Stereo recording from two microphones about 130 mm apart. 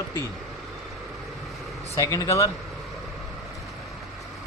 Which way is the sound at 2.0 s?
25° left (ahead or behind).